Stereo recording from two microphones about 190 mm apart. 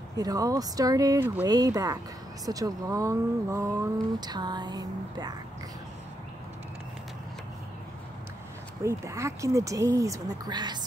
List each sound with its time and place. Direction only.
0.2 s speech: 20° right (ahead or behind)
8.8 s speech: 15° right (ahead or behind)